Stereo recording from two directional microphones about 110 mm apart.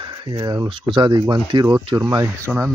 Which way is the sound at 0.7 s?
50° right (ahead or behind).